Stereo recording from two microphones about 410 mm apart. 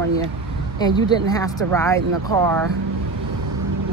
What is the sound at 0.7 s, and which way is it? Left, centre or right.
Speech, centre.